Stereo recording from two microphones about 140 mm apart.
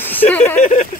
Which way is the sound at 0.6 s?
55° left (ahead or behind).